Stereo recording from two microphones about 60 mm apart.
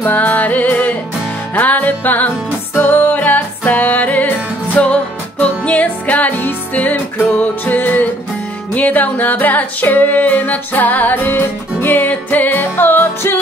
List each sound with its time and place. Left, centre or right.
0.0 s music: left